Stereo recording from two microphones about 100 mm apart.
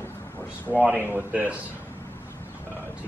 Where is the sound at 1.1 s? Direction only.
15° right (ahead or behind).